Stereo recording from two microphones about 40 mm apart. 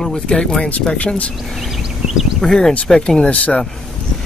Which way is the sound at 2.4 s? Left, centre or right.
Centre.